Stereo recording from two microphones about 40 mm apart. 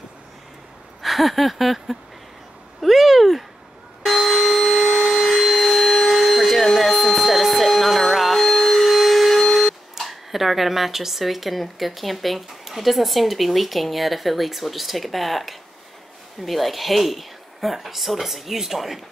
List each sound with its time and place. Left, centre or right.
1.0 s a sound: centre
2.8 s cat: centre
4.0 s bicycle bell: centre
5.0 s vacuum cleaner: centre
16.3 s speech: centre